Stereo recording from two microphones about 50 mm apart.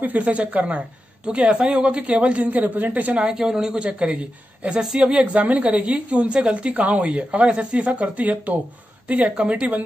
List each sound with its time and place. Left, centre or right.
0.0 s a woman's voice: right
3.2 s a woman's voice: centre
5.1 s a woman's voice: right